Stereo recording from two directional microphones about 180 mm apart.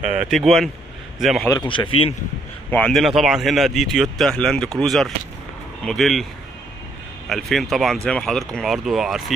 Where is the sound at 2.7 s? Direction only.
5° left (ahead or behind).